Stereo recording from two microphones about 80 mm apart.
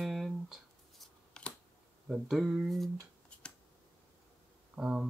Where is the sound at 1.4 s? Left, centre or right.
Centre.